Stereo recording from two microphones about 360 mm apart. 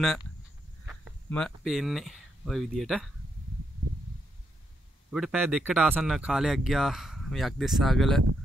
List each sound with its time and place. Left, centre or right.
0.8 s speech: centre
5.1 s speech: centre